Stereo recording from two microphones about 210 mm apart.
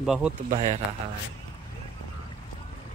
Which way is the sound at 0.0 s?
Centre (ahead or behind).